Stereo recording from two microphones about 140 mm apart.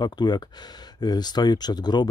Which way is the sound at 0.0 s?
30° left (ahead or behind).